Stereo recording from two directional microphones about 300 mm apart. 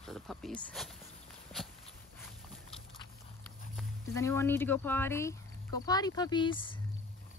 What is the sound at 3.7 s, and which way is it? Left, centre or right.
A child's voice, centre.